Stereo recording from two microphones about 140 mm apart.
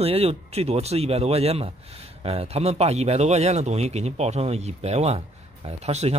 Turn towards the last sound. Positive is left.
turn(degrees=-50)  # may be behind; listen again after turning